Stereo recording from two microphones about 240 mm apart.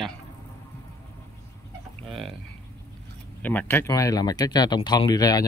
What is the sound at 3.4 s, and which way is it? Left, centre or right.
Speech, centre.